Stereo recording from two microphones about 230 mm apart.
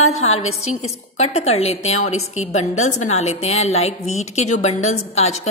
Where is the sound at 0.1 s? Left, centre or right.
Left.